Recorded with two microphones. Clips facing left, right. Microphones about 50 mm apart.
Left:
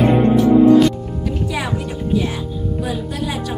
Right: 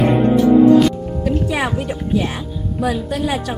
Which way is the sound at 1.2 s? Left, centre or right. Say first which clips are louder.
Right 4 dB; right.